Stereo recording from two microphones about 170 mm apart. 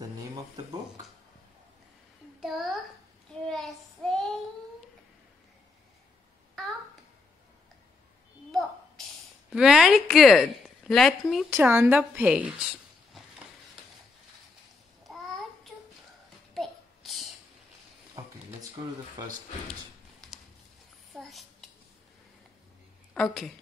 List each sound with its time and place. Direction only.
2.4 s a child's voice: centre (ahead or behind)
3.4 s child singing: centre (ahead or behind)
8.5 s a sound: centre (ahead or behind)
9.5 s a woman's voice: 5° right (ahead or behind)
11.5 s a woman's voice: 10° right (ahead or behind)
15.1 s child singing: centre (ahead or behind)
16.5 s babbling: centre (ahead or behind)
18.2 s a sound: 20° right (ahead or behind)
21.1 s a sound: centre (ahead or behind)
23.1 s a woman's voice: 5° left (ahead or behind)